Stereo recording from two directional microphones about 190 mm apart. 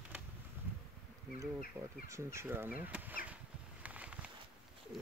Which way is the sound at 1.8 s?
15° right (ahead or behind).